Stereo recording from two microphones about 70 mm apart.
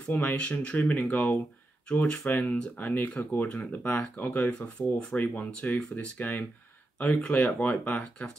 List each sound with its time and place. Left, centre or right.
0.0 s speech: left